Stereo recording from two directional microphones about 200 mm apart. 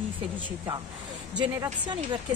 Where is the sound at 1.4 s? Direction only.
25° right (ahead or behind).